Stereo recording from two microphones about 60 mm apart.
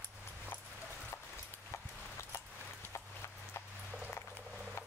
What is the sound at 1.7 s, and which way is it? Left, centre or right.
Clip-clop, left.